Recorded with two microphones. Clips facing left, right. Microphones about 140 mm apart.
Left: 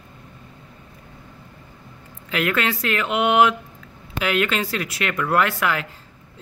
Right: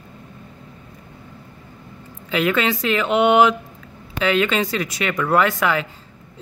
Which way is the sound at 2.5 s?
Centre (ahead or behind).